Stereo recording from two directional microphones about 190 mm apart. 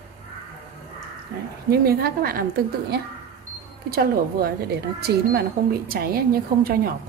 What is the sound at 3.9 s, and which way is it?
A woman's voice, 55° right (ahead or behind).